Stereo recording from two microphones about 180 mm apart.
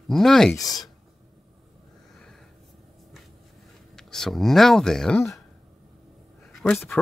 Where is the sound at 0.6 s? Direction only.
20° left (ahead or behind).